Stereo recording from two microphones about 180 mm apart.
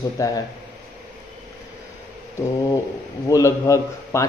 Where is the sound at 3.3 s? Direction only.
15° left (ahead or behind).